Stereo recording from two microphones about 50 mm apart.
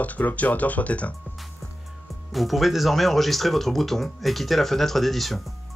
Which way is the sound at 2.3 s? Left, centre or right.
Centre.